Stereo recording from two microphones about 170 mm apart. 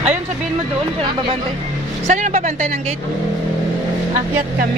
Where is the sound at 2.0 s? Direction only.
45° right (ahead or behind).